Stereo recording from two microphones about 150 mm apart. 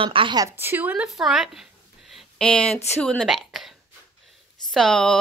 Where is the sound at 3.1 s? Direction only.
Centre (ahead or behind).